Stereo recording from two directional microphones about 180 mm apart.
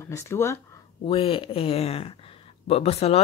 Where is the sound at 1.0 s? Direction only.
30° left (ahead or behind).